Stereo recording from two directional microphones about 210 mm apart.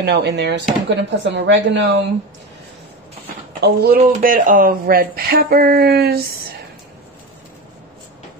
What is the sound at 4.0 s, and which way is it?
Speech, 35° right (ahead or behind).